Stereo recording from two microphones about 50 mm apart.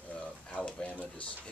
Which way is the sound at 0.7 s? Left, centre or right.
Left.